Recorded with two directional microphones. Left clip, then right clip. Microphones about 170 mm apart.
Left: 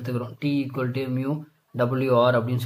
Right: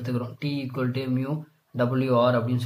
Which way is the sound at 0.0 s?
20° left (ahead or behind).